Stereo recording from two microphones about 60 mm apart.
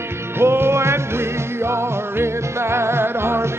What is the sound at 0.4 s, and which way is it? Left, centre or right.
Music, right.